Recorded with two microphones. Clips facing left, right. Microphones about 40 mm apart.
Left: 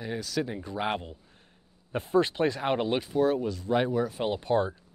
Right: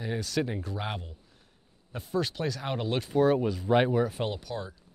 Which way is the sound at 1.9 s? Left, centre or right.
Left.